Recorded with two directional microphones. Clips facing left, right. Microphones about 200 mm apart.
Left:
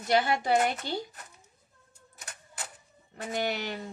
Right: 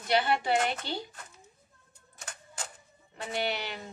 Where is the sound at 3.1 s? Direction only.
45° left (ahead or behind).